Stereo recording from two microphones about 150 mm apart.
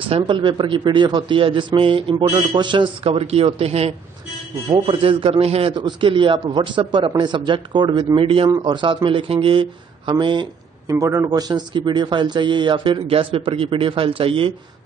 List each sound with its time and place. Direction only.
0.1 s a man's voice: 35° right (ahead or behind)
11.0 s a man's voice: 20° right (ahead or behind); by 14.5 s 35° right (ahead or behind)